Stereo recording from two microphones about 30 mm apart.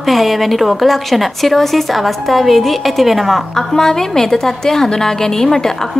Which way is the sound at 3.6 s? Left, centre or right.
Centre.